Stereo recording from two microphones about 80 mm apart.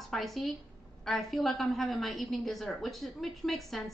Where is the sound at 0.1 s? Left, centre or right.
Centre.